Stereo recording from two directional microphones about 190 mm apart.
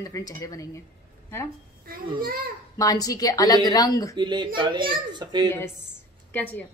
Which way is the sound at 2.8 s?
20° left (ahead or behind).